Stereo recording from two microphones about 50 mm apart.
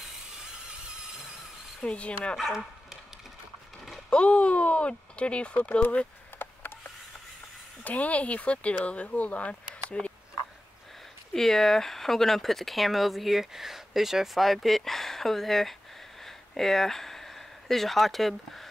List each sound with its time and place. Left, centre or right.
0.7 s squeal: centre
1.8 s speech: left
2.3 s speech: centre
4.1 s speech: left
6.3 s a sound: left
7.8 s speech: left
11.3 s speech: centre
16.3 s a sound: centre